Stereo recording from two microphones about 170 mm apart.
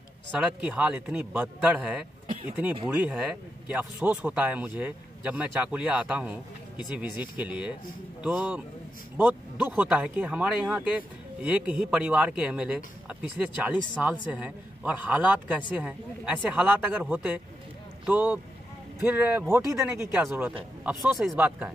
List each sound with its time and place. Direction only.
0.4 s speech: 5° right (ahead or behind)
20.2 s speech: 5° right (ahead or behind)